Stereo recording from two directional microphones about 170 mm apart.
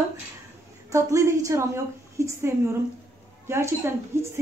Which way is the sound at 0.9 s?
15° right (ahead or behind).